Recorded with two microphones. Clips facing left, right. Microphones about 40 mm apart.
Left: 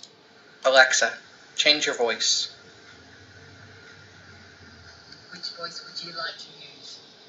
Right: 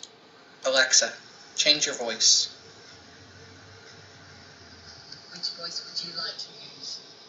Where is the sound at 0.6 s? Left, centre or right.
Left.